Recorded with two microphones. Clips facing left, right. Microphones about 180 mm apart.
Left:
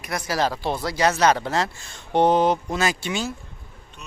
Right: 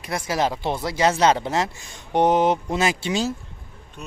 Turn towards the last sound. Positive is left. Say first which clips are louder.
# right 2 dB
turn(degrees=-30)  # may be behind; listen again after turning